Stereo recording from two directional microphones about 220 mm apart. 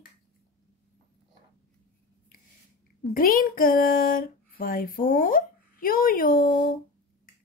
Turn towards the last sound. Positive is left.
turn(degrees=40)  # may be behind; listen again after turning